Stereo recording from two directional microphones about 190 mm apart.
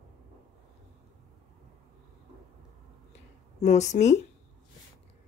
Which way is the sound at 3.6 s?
35° left (ahead or behind).